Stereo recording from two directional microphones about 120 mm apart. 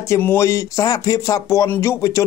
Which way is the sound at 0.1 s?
20° left (ahead or behind).